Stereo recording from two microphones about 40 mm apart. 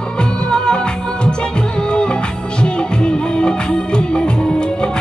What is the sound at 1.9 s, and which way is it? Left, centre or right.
Music, left.